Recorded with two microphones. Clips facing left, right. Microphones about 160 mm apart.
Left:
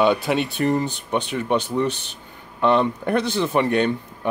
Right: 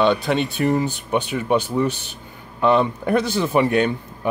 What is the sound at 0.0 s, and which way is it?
Speech, 5° left (ahead or behind).